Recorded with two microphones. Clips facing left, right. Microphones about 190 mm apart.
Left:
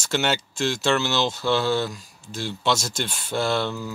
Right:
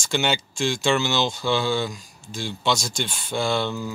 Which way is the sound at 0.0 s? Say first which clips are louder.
Even; 5° left (ahead or behind).